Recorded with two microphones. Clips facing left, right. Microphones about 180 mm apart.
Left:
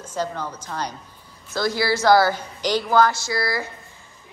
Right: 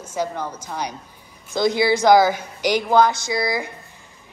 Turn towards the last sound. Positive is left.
turn(degrees=-20)  # may be behind; listen again after turning